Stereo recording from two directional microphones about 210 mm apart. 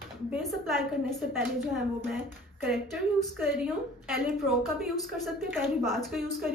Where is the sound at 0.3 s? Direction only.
Centre (ahead or behind).